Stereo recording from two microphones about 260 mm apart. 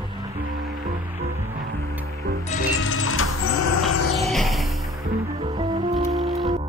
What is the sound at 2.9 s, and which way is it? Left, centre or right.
Music, left.